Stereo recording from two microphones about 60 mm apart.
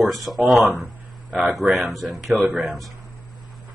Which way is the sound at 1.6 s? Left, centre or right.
Right.